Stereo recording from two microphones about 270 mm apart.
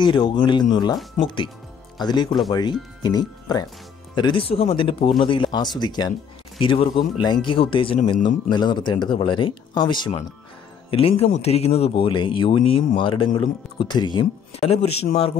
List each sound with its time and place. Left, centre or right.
0.0 s speech: centre
8.5 s speech: centre